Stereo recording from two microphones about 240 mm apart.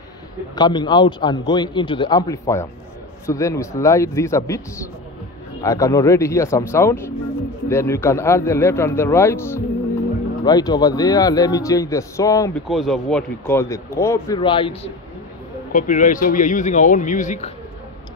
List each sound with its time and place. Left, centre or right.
0.6 s a man's voice: centre
5.6 s a man's voice: centre
12.6 s a man's voice: centre; by 14.9 s left
15.7 s a man's voice: left